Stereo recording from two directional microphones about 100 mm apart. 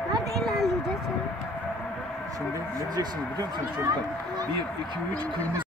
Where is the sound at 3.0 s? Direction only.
40° right (ahead or behind).